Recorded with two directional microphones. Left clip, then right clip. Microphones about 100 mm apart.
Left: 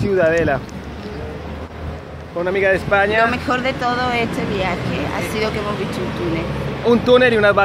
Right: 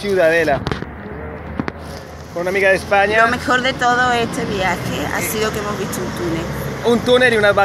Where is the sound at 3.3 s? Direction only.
20° right (ahead or behind).